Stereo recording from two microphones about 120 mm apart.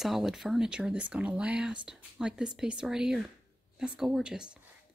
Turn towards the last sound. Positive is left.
turn(degrees=-5)  # may be behind; listen again after turning